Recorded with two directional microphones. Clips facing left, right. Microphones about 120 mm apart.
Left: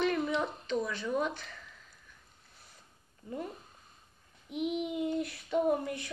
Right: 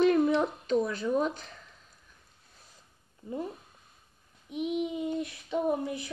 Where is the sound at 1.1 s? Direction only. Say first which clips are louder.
Right 3 dB; 35° right (ahead or behind).